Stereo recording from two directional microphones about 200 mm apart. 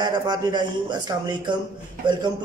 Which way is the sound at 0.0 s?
20° right (ahead or behind).